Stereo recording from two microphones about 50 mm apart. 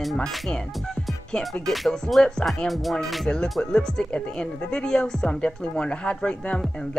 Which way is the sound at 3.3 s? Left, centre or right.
Centre.